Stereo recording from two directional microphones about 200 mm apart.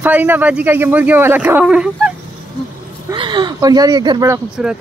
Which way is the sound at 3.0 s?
25° right (ahead or behind).